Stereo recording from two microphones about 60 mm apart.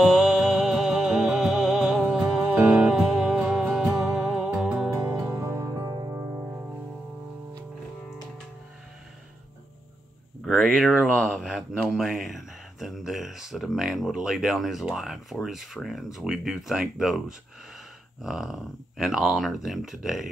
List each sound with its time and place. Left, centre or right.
0.0 s music: centre
2.4 s music: right
2.9 s music: centre
5.4 s music: right
6.1 s music: right
10.4 s a sound: centre
11.9 s speech: centre